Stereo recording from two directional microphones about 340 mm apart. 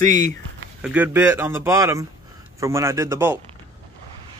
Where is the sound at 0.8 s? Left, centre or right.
Centre.